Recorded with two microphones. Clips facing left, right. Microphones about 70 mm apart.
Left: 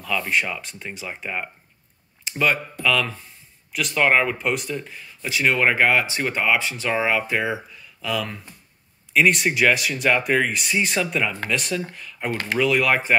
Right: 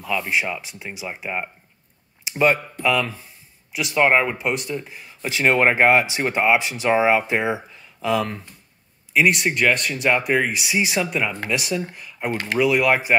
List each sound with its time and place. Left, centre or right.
0.0 s speech: centre
2.3 s speech: right
3.7 s speech: centre
4.0 s speech: centre
5.0 s speech: right
7.8 s a sound: right
9.1 s speech: centre